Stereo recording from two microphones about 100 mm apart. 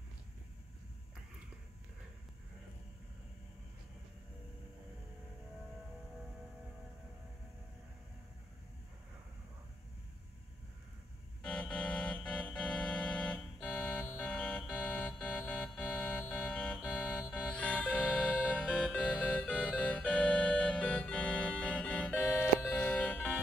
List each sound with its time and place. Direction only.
11.4 s organ: 10° left (ahead or behind)
14.1 s a sound: 5° left (ahead or behind)
16.8 s music: 5° left (ahead or behind)
20.2 s organ: 10° left (ahead or behind)
22.7 s music: 20° left (ahead or behind)